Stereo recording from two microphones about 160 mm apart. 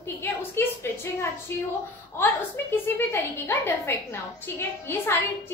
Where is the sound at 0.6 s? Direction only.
15° left (ahead or behind).